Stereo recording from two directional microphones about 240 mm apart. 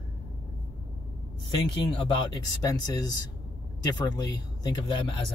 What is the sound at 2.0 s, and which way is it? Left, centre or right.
Speech, centre.